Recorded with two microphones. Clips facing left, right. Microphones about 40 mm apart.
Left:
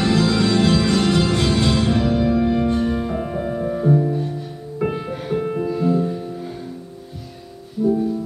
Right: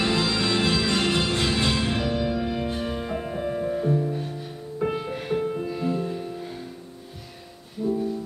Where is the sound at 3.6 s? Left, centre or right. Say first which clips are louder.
Left 4 dB; centre.